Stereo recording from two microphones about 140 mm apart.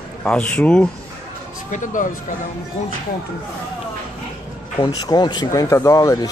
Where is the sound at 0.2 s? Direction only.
10° left (ahead or behind).